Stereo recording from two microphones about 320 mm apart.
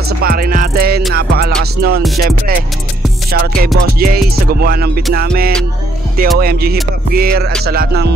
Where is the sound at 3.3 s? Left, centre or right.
Right.